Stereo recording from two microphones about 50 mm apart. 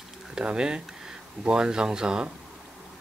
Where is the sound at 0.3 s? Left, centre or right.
Centre.